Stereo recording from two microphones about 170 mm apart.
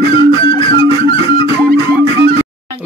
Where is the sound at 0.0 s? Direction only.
35° left (ahead or behind).